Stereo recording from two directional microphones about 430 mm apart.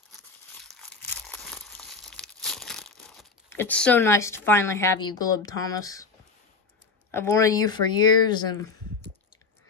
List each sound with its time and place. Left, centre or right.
0.6 s crumpling: centre
7.1 s speech: centre